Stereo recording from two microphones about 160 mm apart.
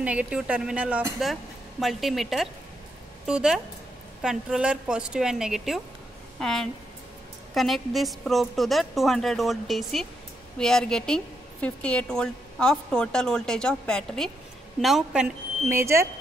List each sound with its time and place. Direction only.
0.0 s a woman's voice: 10° right (ahead or behind)
15.7 s speech: 15° right (ahead or behind)